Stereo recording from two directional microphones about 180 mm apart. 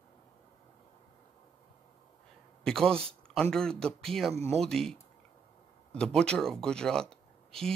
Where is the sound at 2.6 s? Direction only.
5° left (ahead or behind).